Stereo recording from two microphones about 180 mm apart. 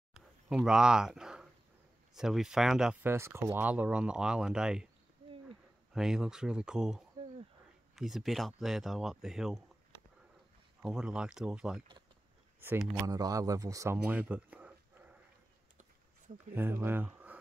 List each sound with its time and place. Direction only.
0.1 s a sound: centre (ahead or behind)
2.1 s speech: centre (ahead or behind)
5.9 s speech: 5° right (ahead or behind)
10.8 s speech: 5° right (ahead or behind)
12.5 s speech: 15° right (ahead or behind)
14.0 s a sound: 10° right (ahead or behind)
16.5 s speech: 10° right (ahead or behind)